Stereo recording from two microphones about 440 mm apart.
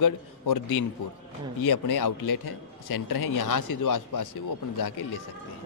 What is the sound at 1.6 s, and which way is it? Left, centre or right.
A man's voice, left.